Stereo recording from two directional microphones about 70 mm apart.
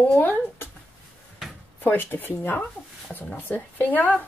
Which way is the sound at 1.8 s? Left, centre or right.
Left.